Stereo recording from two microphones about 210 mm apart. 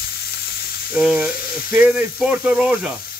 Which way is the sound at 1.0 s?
5° right (ahead or behind).